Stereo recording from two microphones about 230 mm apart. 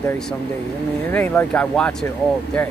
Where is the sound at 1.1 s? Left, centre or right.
Centre.